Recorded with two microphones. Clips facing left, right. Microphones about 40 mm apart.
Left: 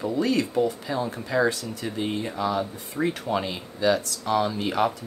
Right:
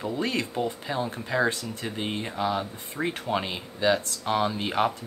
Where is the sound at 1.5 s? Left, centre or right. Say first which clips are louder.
Left 2 dB; right.